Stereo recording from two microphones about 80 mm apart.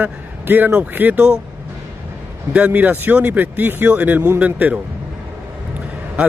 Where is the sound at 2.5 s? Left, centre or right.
Centre.